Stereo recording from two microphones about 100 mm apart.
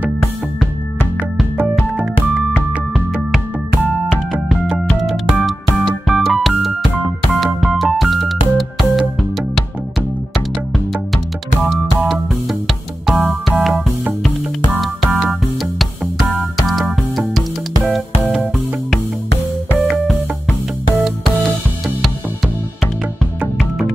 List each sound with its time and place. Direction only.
1.6 s music: 15° right (ahead or behind)
4.1 s music: 5° right (ahead or behind)
11.6 s music: centre (ahead or behind)
18.3 s music: centre (ahead or behind)